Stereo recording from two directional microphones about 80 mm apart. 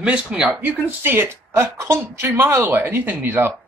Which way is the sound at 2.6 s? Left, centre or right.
Right.